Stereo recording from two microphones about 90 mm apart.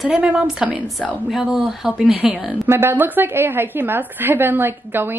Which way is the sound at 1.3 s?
5° right (ahead or behind).